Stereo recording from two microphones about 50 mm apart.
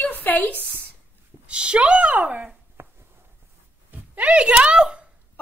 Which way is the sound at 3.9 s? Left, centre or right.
Right.